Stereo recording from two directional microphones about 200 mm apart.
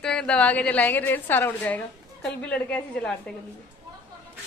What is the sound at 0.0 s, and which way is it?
A woman's voice, 5° left (ahead or behind).